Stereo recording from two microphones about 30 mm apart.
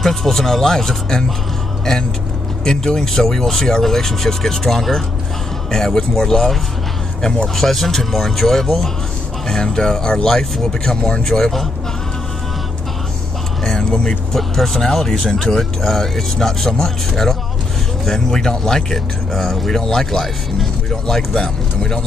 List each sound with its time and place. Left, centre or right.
0.0 s speech: centre
2.6 s speech: left
7.5 s speech: centre
9.5 s speech: centre
11.0 s speech: left
13.7 s vehicle: left
14.0 s speech: centre
21.4 s speech: left